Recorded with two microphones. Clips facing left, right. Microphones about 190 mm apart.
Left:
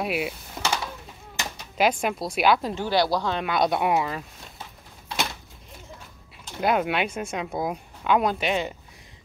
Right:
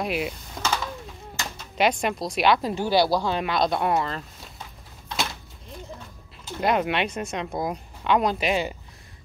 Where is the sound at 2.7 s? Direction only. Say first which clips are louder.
Right 2 dB; 10° right (ahead or behind).